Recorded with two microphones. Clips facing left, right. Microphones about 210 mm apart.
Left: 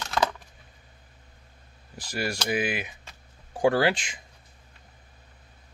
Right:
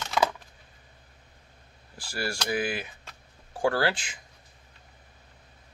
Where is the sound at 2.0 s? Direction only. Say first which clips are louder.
Left 2 dB; 20° left (ahead or behind).